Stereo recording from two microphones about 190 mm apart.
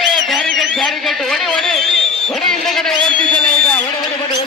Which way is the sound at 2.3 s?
Centre (ahead or behind).